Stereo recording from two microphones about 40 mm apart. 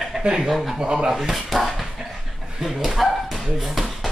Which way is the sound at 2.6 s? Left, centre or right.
Centre.